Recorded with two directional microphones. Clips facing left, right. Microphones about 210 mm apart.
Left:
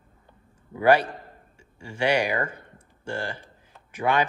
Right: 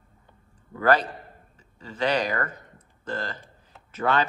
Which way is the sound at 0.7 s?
10° left (ahead or behind).